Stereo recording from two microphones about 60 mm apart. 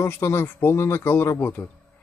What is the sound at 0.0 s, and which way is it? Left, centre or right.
Speech, left.